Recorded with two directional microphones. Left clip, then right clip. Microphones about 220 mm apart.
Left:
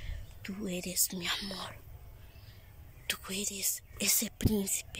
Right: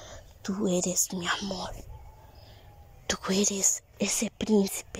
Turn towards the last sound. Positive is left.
turn(degrees=-15)  # may be behind; listen again after turning